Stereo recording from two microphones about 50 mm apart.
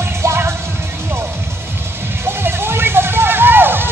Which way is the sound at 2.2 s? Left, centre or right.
Right.